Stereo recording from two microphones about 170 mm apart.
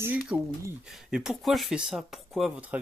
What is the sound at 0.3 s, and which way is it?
Speech, 10° right (ahead or behind).